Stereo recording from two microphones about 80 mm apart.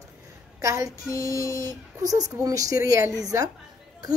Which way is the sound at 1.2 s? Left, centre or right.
Right.